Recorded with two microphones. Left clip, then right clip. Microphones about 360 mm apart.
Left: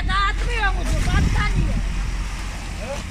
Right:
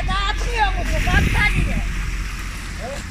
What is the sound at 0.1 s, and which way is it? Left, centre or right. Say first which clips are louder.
Vehicle: left 2 dB; right.